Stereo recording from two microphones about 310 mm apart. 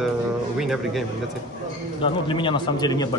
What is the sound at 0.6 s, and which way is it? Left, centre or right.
Speech, centre.